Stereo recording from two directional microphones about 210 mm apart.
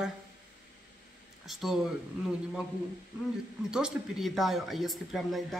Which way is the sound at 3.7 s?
Centre (ahead or behind).